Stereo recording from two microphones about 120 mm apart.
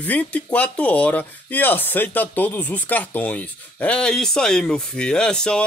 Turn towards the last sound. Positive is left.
turn(degrees=5)  # may be behind; listen again after turning